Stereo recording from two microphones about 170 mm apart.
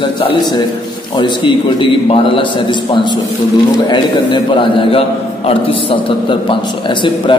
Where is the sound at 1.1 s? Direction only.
30° left (ahead or behind).